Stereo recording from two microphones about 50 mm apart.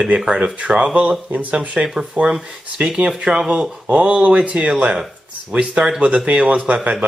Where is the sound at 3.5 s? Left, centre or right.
Right.